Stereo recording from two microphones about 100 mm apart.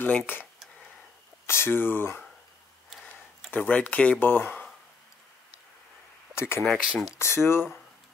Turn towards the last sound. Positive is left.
turn(degrees=25)  # may be behind; listen again after turning